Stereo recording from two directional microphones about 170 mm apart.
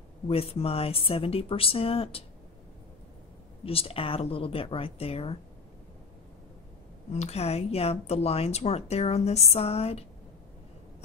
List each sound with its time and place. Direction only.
0.3 s a woman's voice: 35° left (ahead or behind)
3.6 s a woman's voice: 35° left (ahead or behind)
7.1 s a woman's voice: 40° left (ahead or behind)